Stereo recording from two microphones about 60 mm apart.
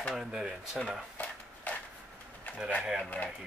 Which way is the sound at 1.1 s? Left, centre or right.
Left.